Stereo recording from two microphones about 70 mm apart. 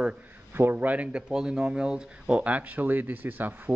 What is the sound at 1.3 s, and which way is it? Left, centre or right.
Speech, centre.